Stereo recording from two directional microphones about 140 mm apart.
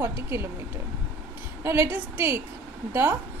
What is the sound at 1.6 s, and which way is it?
Speech, 15° right (ahead or behind).